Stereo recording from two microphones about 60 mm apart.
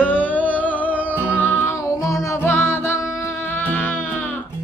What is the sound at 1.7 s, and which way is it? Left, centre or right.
Music, left.